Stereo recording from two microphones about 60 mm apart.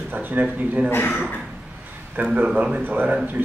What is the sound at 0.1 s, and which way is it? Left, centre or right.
Speech, right.